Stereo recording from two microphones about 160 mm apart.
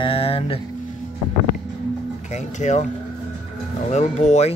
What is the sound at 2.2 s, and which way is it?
Speech, 45° left (ahead or behind).